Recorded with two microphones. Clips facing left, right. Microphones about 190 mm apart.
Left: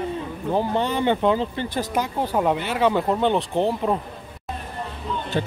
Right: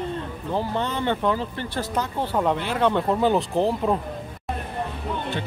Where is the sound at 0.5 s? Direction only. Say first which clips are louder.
Left 3 dB; 15° left (ahead or behind).